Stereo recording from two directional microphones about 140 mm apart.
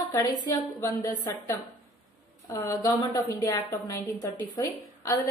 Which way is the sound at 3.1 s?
25° left (ahead or behind).